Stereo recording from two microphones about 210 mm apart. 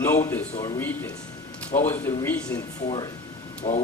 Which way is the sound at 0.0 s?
10° left (ahead or behind).